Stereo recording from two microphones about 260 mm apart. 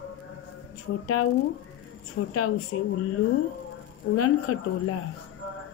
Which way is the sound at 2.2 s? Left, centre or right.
Left.